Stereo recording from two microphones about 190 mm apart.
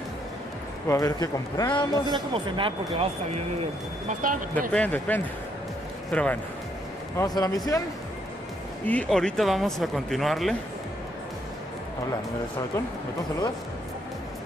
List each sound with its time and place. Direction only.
0.8 s a man's voice: 20° left (ahead or behind)
2.0 s speech: 25° right (ahead or behind)
4.2 s speech: 45° right (ahead or behind)
4.7 s a man's voice: 10° left (ahead or behind)
7.2 s speech: 20° left (ahead or behind)
8.8 s speech: 5° left (ahead or behind)